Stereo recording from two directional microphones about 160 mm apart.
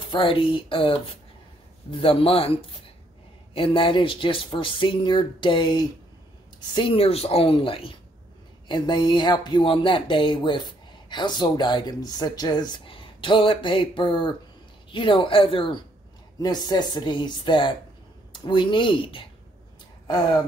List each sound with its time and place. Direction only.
0.1 s speech: 30° left (ahead or behind)